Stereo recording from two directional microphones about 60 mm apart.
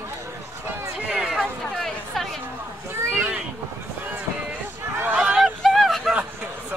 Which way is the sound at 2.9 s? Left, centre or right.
Right.